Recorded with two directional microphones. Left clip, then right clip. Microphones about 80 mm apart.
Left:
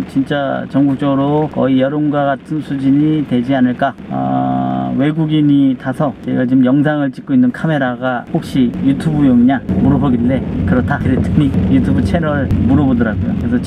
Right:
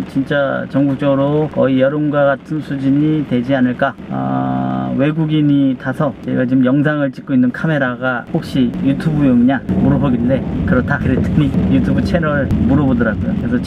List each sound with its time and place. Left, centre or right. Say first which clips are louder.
0.3 s speech: right 3 dB; centre
12.3 s speech: even; centre